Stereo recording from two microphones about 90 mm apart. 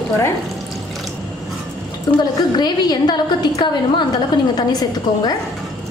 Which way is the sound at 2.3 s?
50° left (ahead or behind).